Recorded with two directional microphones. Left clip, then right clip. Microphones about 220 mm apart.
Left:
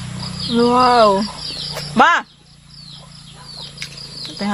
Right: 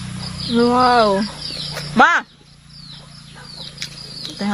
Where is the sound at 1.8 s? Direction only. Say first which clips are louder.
Even; 10° right (ahead or behind).